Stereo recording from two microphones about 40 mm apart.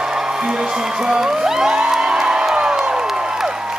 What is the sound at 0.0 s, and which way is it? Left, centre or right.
Speech, centre.